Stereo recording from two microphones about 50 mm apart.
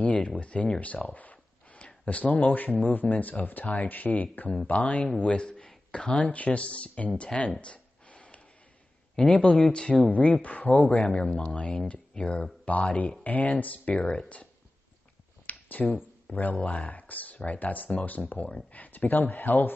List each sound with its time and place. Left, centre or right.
0.0 s speech: left
0.4 s a sound: left
2.3 s speech: left
7.3 s speech: centre
7.6 s a sound: left
9.1 s speech: left